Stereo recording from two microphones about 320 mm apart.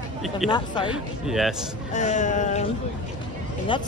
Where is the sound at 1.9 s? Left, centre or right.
Left.